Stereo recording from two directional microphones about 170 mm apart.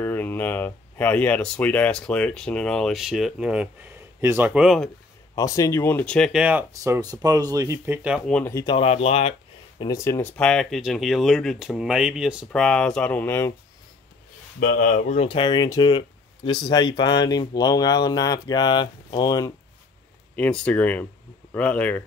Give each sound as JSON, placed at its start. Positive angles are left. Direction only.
{"t": 0.0, "sound": "speech", "side_deg": 10}
{"t": 5.3, "sound": "speech", "side_deg": 20}
{"t": 6.4, "sound": "speech", "side_deg": -15}
{"t": 8.3, "sound": "speech", "side_deg": 5}
{"t": 8.5, "sound": "speech", "side_deg": 30}
{"t": 9.8, "sound": "speech", "side_deg": 20}
{"t": 10.3, "sound": "speech", "side_deg": 5}
{"t": 14.6, "sound": "speech", "side_deg": 55}
{"t": 20.3, "sound": "speech", "side_deg": 5}